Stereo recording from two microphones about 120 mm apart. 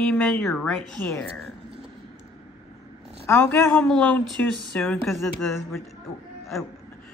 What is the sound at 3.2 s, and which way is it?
A woman's voice, 20° left (ahead or behind).